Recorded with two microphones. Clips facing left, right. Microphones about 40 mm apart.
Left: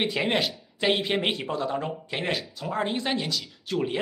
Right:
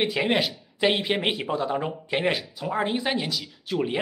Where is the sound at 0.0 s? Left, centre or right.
Centre.